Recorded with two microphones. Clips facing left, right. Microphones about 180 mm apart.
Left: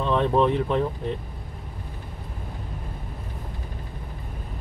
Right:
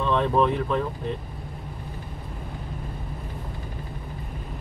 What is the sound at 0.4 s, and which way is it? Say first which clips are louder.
Speech: left 1 dB; 30° left (ahead or behind).